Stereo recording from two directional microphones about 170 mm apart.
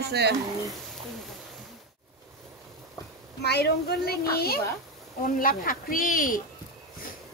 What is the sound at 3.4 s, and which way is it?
Speech, 75° left (ahead or behind).